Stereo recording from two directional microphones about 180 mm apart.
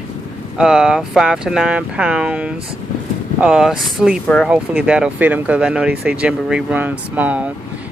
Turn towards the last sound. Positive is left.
turn(degrees=-10)  # may be behind; listen again after turning